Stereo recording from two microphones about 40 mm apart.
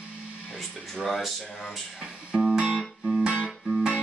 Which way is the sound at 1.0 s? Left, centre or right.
Centre.